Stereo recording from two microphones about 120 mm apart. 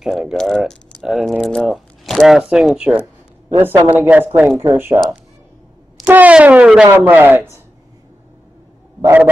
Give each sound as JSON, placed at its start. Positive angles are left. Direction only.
{"t": 0.0, "sound": "speech", "side_deg": -5}
{"t": 3.5, "sound": "speech", "side_deg": -20}
{"t": 6.0, "sound": "speech", "side_deg": -15}
{"t": 9.0, "sound": "speech", "side_deg": -15}